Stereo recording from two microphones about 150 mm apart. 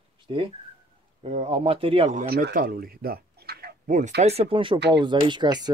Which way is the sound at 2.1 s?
70° right (ahead or behind).